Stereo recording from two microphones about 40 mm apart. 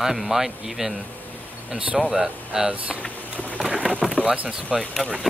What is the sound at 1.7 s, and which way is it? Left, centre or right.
Speech, right.